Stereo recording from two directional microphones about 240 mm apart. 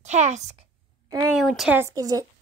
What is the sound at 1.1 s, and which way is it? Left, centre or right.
Speech, centre.